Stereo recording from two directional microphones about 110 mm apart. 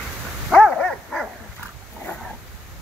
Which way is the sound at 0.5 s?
5° left (ahead or behind).